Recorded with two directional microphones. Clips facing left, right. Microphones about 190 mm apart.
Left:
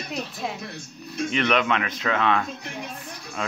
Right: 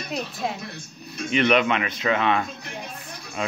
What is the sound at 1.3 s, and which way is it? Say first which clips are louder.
A child's voice: right 3 dB; 5° right (ahead or behind).